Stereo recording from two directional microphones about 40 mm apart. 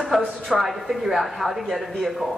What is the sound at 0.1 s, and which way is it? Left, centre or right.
A woman's voice, centre.